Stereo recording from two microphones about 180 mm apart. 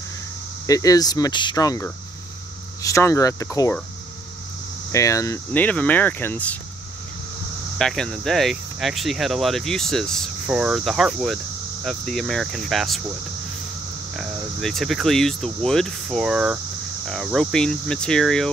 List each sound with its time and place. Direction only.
0.7 s speech: 20° left (ahead or behind)
4.9 s speech: 15° left (ahead or behind)
7.8 s speech: 5° left (ahead or behind)
14.1 s speech: centre (ahead or behind)